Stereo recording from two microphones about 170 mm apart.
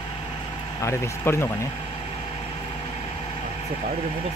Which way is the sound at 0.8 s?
15° left (ahead or behind).